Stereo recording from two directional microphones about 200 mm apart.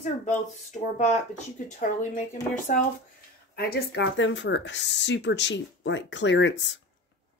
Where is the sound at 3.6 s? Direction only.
55° left (ahead or behind).